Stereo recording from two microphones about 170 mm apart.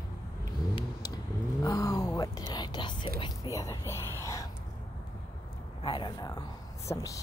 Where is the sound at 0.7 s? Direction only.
20° left (ahead or behind).